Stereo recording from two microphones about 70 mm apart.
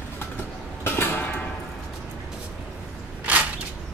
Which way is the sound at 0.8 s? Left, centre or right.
Left.